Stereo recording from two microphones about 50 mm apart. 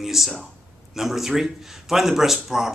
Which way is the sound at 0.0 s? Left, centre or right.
Centre.